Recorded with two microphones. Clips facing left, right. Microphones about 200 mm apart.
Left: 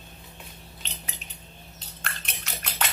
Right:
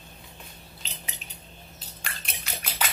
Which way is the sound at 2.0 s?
Centre (ahead or behind).